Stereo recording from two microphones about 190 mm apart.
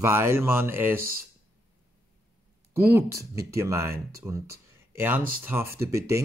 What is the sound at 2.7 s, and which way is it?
Speech, 15° right (ahead or behind).